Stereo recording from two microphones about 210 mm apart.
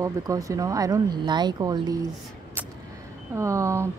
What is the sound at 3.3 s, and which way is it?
Speech, 15° right (ahead or behind).